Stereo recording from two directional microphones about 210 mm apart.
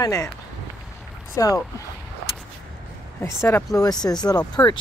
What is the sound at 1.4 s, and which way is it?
Speech, 15° left (ahead or behind).